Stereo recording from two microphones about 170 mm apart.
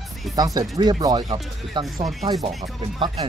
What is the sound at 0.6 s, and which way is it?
Speech, 25° right (ahead or behind).